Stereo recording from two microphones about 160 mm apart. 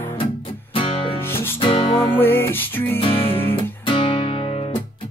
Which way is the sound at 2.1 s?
15° left (ahead or behind).